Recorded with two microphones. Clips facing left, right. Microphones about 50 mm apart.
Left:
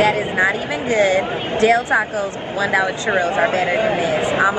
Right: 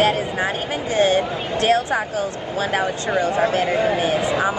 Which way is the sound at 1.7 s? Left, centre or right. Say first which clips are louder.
Left 3 dB; left.